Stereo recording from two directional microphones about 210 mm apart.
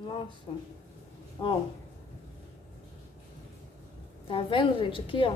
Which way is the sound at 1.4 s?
25° left (ahead or behind).